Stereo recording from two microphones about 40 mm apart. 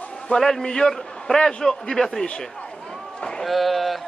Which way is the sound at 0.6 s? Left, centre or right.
Centre.